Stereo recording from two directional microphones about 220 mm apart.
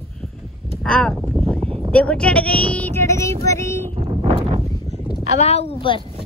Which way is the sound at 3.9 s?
25° right (ahead or behind).